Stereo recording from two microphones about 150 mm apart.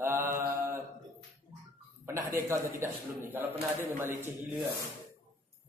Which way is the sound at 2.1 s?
20° right (ahead or behind).